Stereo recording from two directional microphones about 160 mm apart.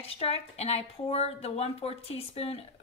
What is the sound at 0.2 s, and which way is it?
A woman's voice, 40° left (ahead or behind).